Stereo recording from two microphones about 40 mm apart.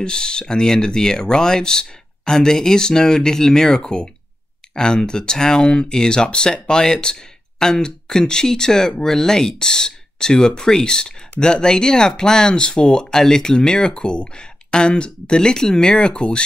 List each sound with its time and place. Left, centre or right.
0.0 s speech: centre